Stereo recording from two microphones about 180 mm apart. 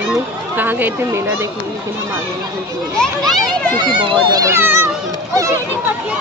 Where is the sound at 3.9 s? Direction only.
25° right (ahead or behind).